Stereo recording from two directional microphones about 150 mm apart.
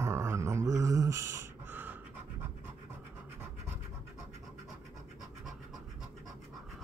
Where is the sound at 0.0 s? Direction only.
20° right (ahead or behind).